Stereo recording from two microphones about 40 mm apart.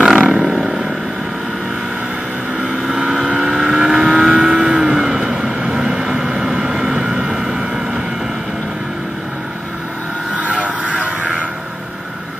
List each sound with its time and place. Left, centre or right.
0.0 s roaring cats: centre
2.9 s vehicle: centre
10.3 s vehicle: right